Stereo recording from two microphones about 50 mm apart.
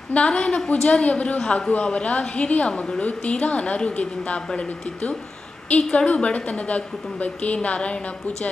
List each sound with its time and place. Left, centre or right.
0.1 s a woman's voice: left